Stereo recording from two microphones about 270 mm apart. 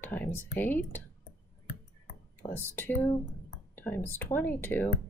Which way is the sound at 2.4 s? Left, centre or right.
Centre.